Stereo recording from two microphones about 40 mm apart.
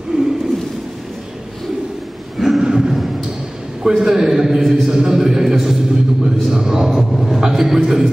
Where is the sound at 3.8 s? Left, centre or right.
Centre.